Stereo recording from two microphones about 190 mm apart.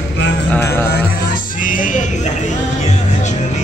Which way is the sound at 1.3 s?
45° left (ahead or behind).